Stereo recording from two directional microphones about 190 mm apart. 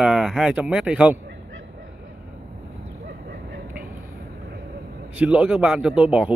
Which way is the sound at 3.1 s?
55° right (ahead or behind).